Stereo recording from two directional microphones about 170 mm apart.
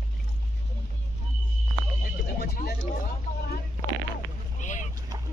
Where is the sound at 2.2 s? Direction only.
65° left (ahead or behind).